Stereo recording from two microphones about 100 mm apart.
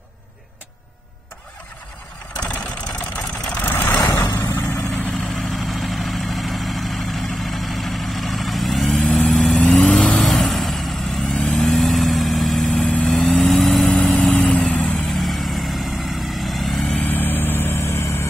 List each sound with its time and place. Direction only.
3.6 s vehicle: 20° left (ahead or behind)
4.0 s vehicle: 40° left (ahead or behind)
4.4 s vehicle: 25° left (ahead or behind)
5.2 s vehicle: centre (ahead or behind)
8.8 s vehicle: 15° left (ahead or behind)
11.3 s vehicle: 15° left (ahead or behind)
11.6 s vehicle: centre (ahead or behind)
12.7 s vehicle: 15° left (ahead or behind)
15.0 s vehicle: centre (ahead or behind)
16.8 s vehicle: 15° left (ahead or behind)